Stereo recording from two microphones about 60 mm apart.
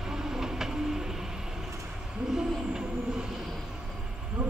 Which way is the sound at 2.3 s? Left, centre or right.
Centre.